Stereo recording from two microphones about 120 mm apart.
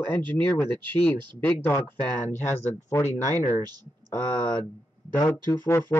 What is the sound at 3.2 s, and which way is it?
Speech, 90° left.